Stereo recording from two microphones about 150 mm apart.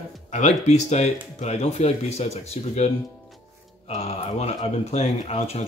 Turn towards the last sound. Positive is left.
turn(degrees=45)  # may be behind; listen again after turning